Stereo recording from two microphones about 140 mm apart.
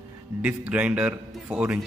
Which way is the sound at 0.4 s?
10° right (ahead or behind).